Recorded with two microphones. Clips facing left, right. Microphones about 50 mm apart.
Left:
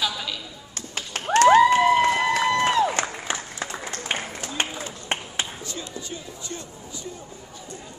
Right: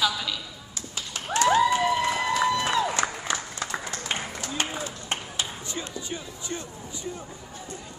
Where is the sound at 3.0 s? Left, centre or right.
Left.